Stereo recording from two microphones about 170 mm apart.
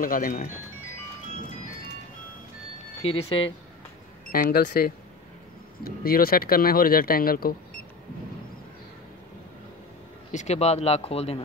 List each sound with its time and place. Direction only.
0.0 s speech: 55° left (ahead or behind)
3.0 s speech: 35° left (ahead or behind)
4.3 s speech: 60° left (ahead or behind)
10.3 s speech: 40° left (ahead or behind)